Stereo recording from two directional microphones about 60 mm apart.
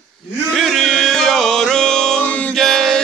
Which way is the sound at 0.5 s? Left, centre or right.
Centre.